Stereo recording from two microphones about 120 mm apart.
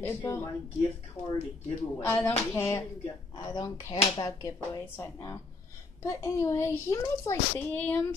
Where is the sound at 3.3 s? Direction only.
35° left (ahead or behind).